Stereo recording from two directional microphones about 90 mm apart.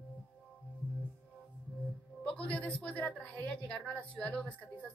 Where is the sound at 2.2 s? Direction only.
15° left (ahead or behind).